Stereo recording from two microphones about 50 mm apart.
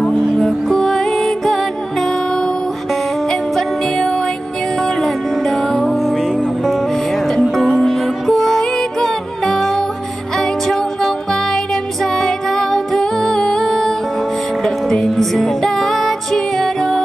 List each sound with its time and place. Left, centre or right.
0.5 s music: centre
7.5 s music: centre